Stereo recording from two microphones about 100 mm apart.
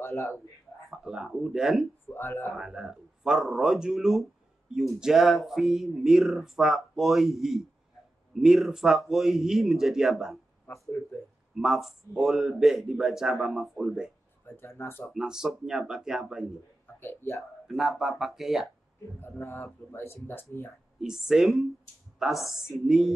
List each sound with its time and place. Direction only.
0.0 s a man's voice: 25° left (ahead or behind)
0.8 s speech: 5° right (ahead or behind)
2.0 s speech: 25° left (ahead or behind)
2.5 s speech: 5° right (ahead or behind)
11.5 s speech: 5° right (ahead or behind)
14.6 s speech: 25° left (ahead or behind)
15.0 s speech: 5° right (ahead or behind)
17.0 s speech: 25° left (ahead or behind)
17.4 s speech: centre (ahead or behind)
19.1 s speech: 25° left (ahead or behind)
21.0 s speech: 5° right (ahead or behind)